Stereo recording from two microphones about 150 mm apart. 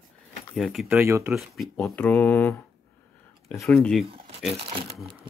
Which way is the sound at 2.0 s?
10° left (ahead or behind).